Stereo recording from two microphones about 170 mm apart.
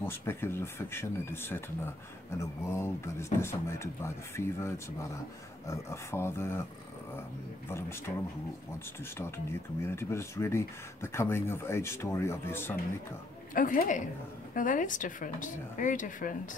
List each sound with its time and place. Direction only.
0.0 s speech: 15° left (ahead or behind)
9.2 s speech: 15° left (ahead or behind)
13.6 s speech: 55° left (ahead or behind)